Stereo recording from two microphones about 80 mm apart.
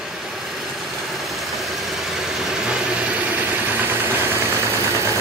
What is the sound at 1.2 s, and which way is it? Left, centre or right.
Vehicle, centre.